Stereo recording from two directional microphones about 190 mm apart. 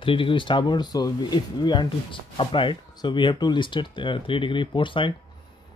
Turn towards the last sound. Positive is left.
turn(degrees=25)  # may be behind; listen again after turning